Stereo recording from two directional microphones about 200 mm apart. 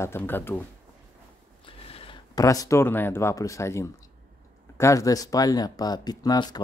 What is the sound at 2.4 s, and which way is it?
Speech, 15° left (ahead or behind).